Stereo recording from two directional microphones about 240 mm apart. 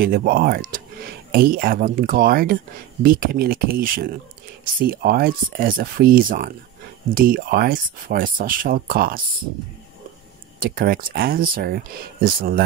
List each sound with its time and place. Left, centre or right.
0.0 s speech: right
10.6 s speech: right